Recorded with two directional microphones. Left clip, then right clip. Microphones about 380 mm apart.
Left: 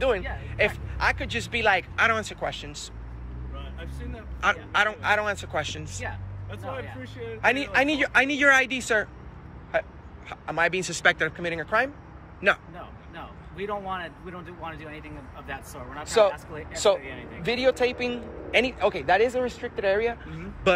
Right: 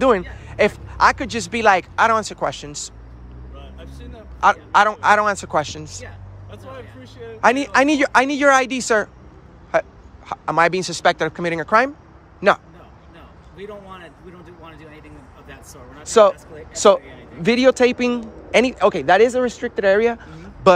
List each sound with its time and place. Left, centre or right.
0.5 s speech: centre
3.5 s a sound: centre
4.7 s speech: centre
13.1 s speech: centre
16.1 s speech: right